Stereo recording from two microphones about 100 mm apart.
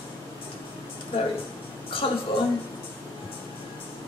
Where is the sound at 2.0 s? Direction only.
65° left (ahead or behind).